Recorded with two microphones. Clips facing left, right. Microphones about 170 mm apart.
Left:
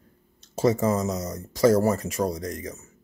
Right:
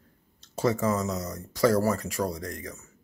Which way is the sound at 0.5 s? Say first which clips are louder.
Left 3 dB; 20° left (ahead or behind).